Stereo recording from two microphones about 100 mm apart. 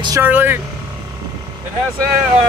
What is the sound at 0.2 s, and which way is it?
Speech, 15° right (ahead or behind).